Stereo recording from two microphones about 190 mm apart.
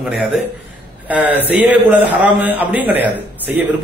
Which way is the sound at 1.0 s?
10° right (ahead or behind).